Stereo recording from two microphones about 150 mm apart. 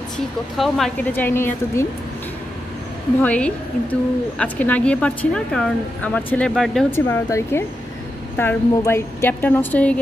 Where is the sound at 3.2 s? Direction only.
10° left (ahead or behind).